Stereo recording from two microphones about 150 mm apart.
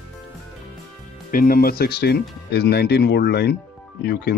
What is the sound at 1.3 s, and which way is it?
Speech, 70° left (ahead or behind).